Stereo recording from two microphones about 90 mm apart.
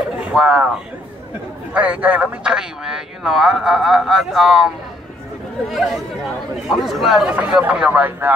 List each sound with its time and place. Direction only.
0.2 s speech: 10° right (ahead or behind)
1.7 s speech: 15° right (ahead or behind)
7.2 s speech: 10° right (ahead or behind)